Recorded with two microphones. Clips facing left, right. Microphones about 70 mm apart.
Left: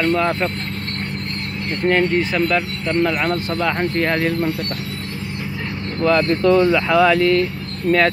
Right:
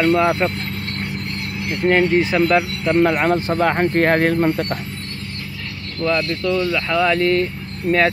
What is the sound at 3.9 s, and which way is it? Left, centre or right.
Speech, right.